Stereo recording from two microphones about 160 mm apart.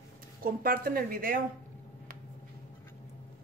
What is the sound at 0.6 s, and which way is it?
Speech, 70° right (ahead or behind).